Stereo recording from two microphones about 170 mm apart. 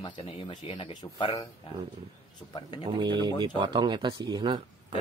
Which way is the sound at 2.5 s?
25° left (ahead or behind).